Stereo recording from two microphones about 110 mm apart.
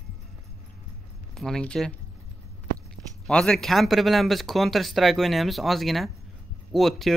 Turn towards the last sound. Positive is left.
turn(degrees=0)  # may be behind; listen again after turning